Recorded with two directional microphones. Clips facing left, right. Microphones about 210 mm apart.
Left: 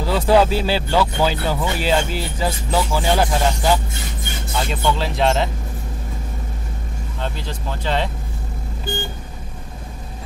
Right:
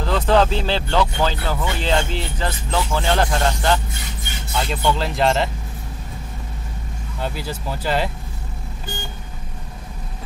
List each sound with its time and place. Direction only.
0.0 s speech: 10° left (ahead or behind)
7.2 s speech: 5° right (ahead or behind)